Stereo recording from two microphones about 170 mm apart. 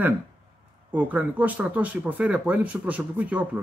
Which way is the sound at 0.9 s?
10° right (ahead or behind).